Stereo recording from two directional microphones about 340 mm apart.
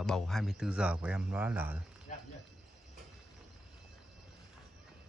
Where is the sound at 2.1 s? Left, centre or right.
Left.